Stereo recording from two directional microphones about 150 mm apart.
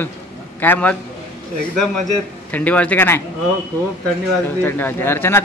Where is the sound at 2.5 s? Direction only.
10° left (ahead or behind).